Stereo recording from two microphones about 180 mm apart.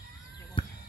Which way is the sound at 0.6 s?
30° left (ahead or behind).